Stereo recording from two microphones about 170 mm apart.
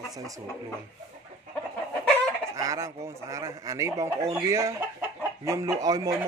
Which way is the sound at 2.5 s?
20° right (ahead or behind).